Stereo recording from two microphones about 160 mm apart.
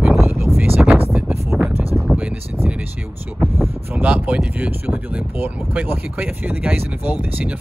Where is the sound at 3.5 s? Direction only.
10° right (ahead or behind).